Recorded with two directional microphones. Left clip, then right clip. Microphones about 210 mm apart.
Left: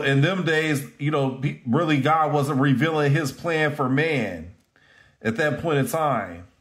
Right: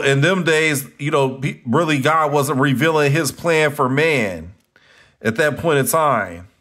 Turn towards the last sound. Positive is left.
turn(degrees=-35)  # may be behind; listen again after turning